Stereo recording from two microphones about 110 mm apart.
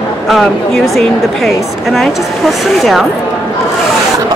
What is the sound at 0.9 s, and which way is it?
A woman's voice, centre (ahead or behind).